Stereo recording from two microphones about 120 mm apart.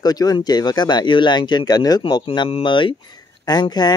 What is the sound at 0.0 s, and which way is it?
Speech, 35° left (ahead or behind).